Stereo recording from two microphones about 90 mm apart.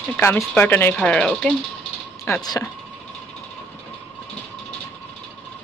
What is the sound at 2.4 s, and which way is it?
Speech, 45° left (ahead or behind).